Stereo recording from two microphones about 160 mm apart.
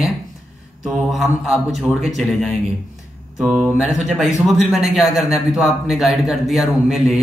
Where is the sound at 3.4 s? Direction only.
5° right (ahead or behind).